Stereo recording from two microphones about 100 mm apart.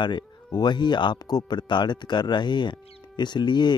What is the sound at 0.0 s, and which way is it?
Speech, 45° left (ahead or behind).